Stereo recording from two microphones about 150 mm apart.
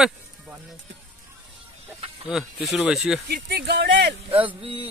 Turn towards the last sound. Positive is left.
turn(degrees=-35)  # may be behind; listen again after turning